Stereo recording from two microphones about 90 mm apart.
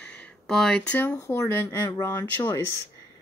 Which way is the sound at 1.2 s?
30° left (ahead or behind).